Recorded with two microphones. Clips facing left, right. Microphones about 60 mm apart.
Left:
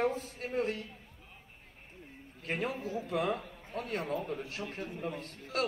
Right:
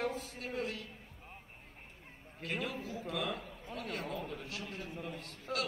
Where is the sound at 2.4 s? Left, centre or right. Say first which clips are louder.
Left 4 dB; left.